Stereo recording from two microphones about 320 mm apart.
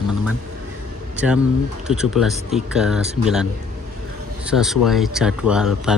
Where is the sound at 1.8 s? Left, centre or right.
Centre.